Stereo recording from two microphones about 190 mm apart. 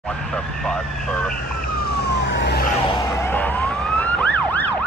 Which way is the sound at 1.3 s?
50° left (ahead or behind).